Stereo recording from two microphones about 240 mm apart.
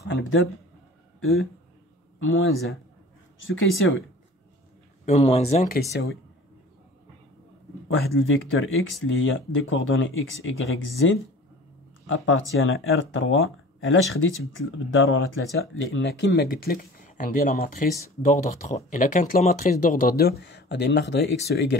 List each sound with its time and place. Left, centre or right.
0.0 s speech: left
2.1 s speech: left
3.4 s speech: left
5.0 s speech: left
8.2 s speech: left